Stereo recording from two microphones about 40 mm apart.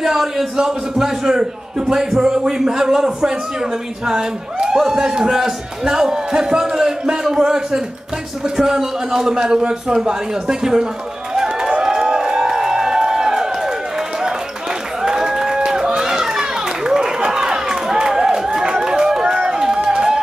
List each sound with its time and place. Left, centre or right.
0.0 s a man's voice: centre
11.3 s run: centre
11.7 s crowd: centre
15.0 s run: centre